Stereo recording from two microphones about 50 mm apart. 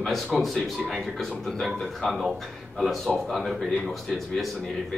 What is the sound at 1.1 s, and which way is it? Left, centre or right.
A man's voice, centre.